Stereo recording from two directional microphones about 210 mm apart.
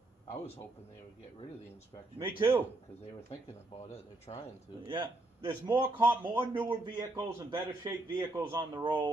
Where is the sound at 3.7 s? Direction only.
25° left (ahead or behind).